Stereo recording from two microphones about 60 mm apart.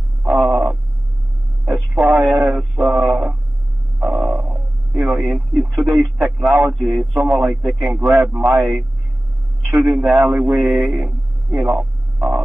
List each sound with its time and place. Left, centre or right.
0.5 s a sound: right
1.7 s radio: centre
2.7 s mantra: centre
4.0 s a sound: centre
5.6 s radio: centre
6.8 s a man's voice: centre
10.4 s speech: right
11.6 s hum: centre